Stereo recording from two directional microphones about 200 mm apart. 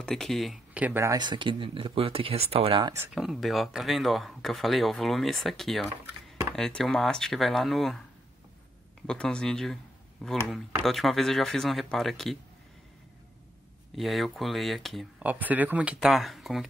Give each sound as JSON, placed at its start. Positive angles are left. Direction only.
{"t": 0.0, "sound": "speech", "side_deg": 0}
{"t": 3.1, "sound": "speech", "side_deg": 0}
{"t": 9.0, "sound": "speech", "side_deg": 5}
{"t": 13.9, "sound": "speech", "side_deg": 0}